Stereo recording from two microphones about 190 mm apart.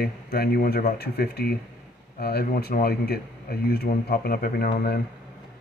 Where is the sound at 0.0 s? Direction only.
50° left (ahead or behind).